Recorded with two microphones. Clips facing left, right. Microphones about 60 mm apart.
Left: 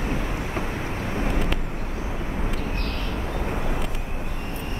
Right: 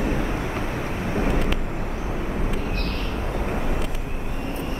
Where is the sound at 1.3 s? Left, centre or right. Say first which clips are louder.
Right 2 dB; centre.